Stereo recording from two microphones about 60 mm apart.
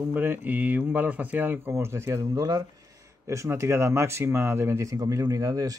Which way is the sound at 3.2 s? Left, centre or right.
Right.